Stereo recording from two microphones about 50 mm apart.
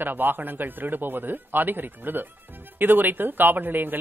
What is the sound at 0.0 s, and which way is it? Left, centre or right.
Speech, right.